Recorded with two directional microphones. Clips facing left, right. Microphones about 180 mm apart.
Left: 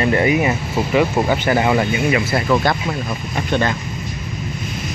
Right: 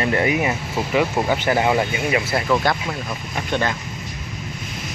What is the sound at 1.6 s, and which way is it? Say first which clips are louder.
Speech: left 2 dB; 15° right (ahead or behind).